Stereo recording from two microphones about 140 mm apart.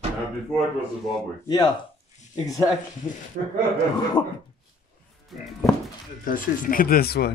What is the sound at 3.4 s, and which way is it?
Speech, 70° right (ahead or behind).